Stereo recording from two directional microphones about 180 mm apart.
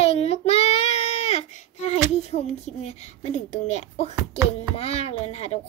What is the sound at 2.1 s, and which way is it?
A woman's voice, 40° left (ahead or behind).